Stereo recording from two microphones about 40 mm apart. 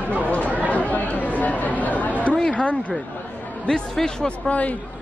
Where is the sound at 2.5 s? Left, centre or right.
Left.